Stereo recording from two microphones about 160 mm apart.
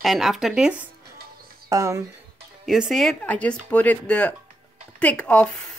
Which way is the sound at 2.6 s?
Centre (ahead or behind).